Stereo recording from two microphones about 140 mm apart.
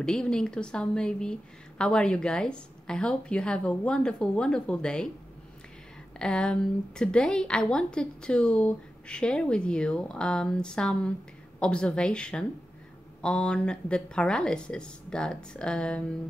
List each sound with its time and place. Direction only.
0.0 s a woman's voice: 5° left (ahead or behind)
6.1 s a woman's voice: 5° left (ahead or behind)